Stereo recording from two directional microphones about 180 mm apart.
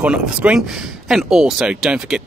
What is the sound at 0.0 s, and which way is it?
Speech, 5° right (ahead or behind).